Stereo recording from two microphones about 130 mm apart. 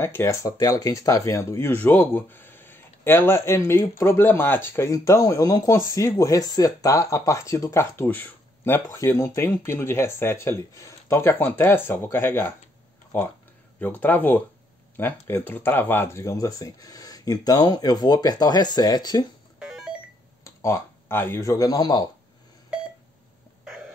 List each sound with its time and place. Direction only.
0.0 s speech: 20° left (ahead or behind)
13.7 s speech: 15° left (ahead or behind); by 19.2 s 30° left (ahead or behind)
20.4 s speech: 20° left (ahead or behind)